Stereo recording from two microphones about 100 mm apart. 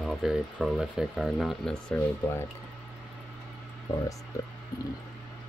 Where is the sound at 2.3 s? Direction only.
20° left (ahead or behind).